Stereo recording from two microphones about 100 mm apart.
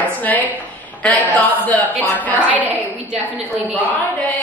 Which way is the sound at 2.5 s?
15° right (ahead or behind).